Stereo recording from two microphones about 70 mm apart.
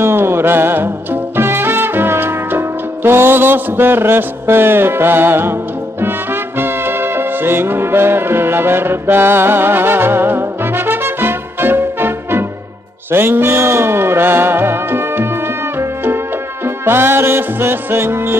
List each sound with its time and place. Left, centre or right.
0.0 s music: right
16.6 s music: right